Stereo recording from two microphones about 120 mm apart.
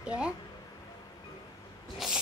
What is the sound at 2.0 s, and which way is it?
Rub, 5° right (ahead or behind).